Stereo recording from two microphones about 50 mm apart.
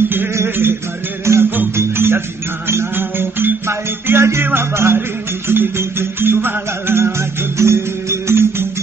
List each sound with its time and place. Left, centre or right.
1.3 s music: right
1.8 s music: right